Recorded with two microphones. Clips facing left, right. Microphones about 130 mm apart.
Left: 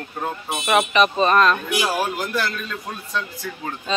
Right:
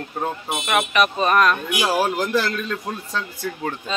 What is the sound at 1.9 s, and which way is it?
Speech, 30° right (ahead or behind).